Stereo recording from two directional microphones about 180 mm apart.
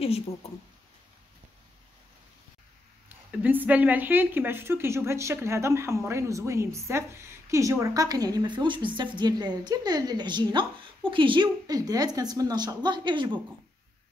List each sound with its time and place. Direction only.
3.3 s speech: 10° right (ahead or behind); by 13.4 s 25° right (ahead or behind)